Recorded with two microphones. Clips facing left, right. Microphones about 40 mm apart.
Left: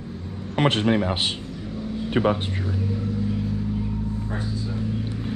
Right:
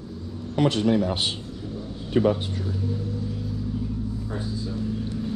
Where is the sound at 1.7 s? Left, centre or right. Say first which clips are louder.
Left 2 dB; left.